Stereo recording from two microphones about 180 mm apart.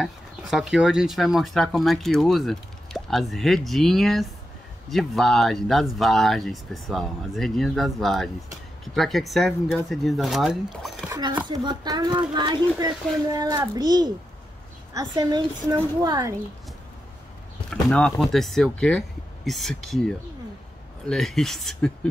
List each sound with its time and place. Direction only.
0.0 s speech: centre (ahead or behind)
11.1 s speech: 25° right (ahead or behind)
17.6 s speech: 5° left (ahead or behind)